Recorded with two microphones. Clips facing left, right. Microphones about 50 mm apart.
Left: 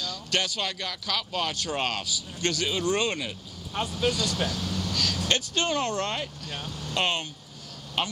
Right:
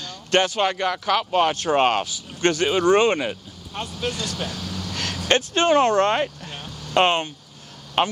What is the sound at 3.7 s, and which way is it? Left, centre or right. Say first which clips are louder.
Speech: left 1 dB; centre.